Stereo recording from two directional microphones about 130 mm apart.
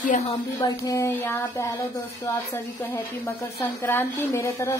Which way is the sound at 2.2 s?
15° left (ahead or behind).